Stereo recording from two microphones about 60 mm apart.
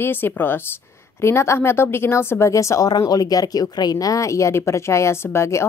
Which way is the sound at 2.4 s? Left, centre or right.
Left.